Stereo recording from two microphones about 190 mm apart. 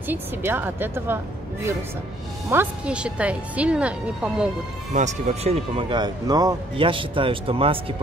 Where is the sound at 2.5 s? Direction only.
10° right (ahead or behind).